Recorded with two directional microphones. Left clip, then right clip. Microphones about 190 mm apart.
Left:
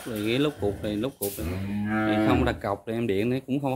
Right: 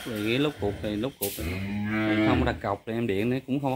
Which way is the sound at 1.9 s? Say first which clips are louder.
Left 1 dB; 35° left (ahead or behind).